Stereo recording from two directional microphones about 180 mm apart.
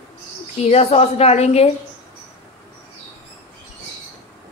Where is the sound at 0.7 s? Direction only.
35° left (ahead or behind).